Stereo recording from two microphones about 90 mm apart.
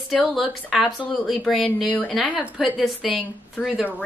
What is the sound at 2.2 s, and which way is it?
Speech, 15° right (ahead or behind).